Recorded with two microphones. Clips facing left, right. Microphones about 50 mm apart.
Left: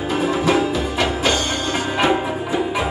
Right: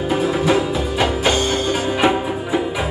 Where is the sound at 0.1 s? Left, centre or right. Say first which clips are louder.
Even; centre.